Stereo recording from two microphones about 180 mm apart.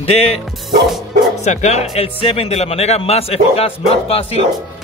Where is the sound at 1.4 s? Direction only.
40° left (ahead or behind).